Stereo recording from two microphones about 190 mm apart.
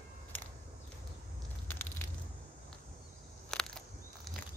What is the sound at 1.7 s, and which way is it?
Crushing, 10° left (ahead or behind).